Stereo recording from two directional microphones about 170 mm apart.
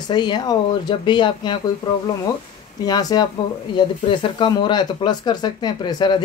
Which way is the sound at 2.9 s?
25° left (ahead or behind).